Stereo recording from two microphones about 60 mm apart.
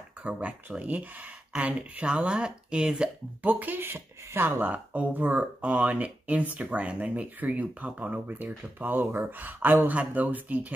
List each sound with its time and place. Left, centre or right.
0.2 s speech: right
3.4 s speech: right
4.6 s speech: right